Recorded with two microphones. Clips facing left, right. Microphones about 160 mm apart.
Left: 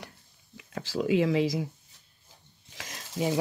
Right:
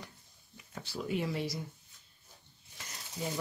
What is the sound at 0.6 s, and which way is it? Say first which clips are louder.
Speech: left 9 dB; 90° left.